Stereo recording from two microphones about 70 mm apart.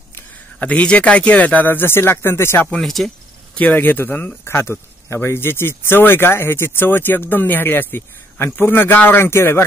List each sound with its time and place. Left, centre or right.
0.6 s speech: centre
2.8 s speech: centre
3.5 s speech: left